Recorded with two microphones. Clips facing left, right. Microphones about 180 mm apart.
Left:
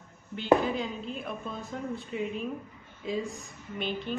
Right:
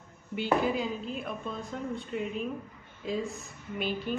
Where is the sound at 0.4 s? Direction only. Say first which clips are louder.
Left 3 dB; 5° right (ahead or behind).